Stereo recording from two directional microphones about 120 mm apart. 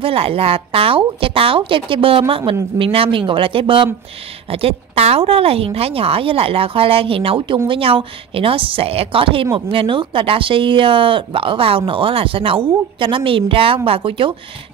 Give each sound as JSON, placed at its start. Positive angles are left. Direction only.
{"t": 0.0, "sound": "a woman's voice", "side_deg": -55}